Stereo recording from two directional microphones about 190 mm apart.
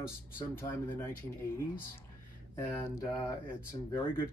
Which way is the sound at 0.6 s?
10° left (ahead or behind).